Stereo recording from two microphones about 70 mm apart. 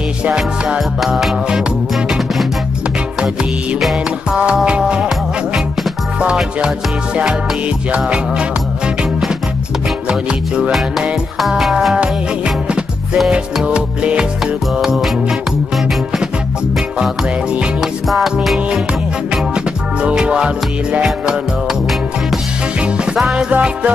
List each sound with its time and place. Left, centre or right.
0.2 s music: centre
3.8 s music: centre
7.9 s music: centre
10.0 s music: centre
10.7 s music: centre
18.0 s music: centre
19.3 s music: centre
22.8 s music: centre
23.5 s music: centre